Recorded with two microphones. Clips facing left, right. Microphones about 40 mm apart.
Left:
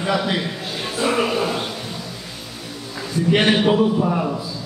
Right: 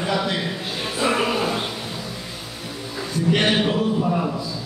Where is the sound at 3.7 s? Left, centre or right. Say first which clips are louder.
Left 3 dB; centre.